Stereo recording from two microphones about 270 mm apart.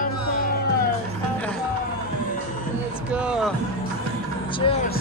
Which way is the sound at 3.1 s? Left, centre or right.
Centre.